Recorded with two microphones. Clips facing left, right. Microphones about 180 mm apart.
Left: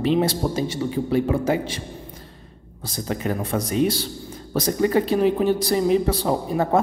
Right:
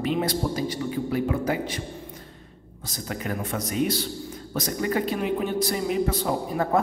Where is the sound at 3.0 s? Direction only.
30° left (ahead or behind).